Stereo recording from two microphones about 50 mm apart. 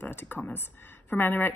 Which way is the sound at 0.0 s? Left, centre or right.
Left.